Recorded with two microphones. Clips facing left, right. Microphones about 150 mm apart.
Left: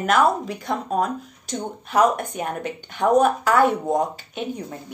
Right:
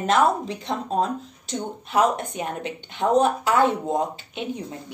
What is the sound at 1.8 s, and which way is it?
Speech, 45° left (ahead or behind).